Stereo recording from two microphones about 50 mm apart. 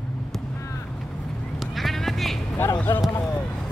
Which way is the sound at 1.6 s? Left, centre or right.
Centre.